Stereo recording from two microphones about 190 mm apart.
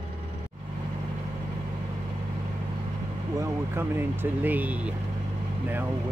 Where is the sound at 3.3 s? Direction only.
15° right (ahead or behind).